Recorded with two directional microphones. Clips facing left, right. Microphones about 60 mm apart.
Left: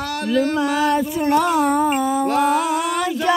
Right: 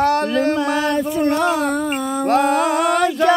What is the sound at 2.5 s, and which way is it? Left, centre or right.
Music, right.